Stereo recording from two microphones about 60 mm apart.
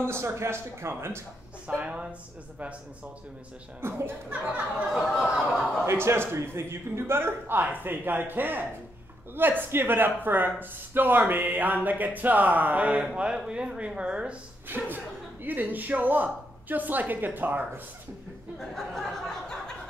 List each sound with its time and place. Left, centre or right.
0.0 s speech: right
1.7 s speech: centre
3.8 s speech: right
4.3 s speech: right
5.9 s speech: right; by 14.3 s centre
14.7 s speech: right
18.6 s a sound: centre